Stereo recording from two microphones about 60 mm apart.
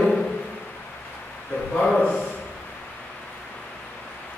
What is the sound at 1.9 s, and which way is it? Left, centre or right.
Speech, centre.